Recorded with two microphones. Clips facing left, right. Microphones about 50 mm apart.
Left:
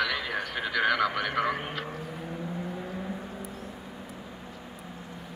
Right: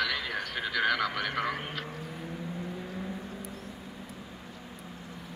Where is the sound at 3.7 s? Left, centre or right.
Centre.